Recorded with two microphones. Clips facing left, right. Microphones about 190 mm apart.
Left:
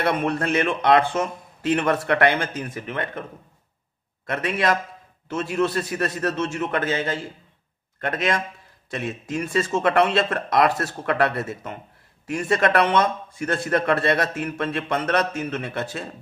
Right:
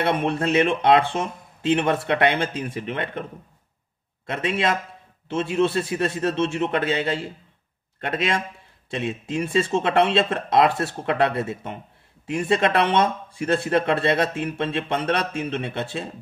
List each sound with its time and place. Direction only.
0.0 s speech: 25° right (ahead or behind)
4.3 s speech: 25° right (ahead or behind)
9.3 s speech: 25° right (ahead or behind)